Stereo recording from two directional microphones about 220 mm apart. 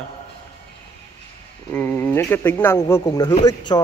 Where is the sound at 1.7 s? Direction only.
10° left (ahead or behind).